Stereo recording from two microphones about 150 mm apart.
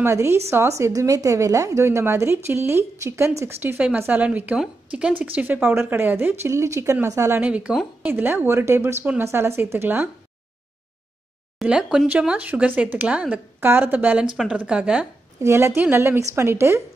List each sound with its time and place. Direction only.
0.0 s a woman's voice: 15° right (ahead or behind)
11.6 s a woman's voice: 5° right (ahead or behind)
15.4 s a woman's voice: 20° right (ahead or behind)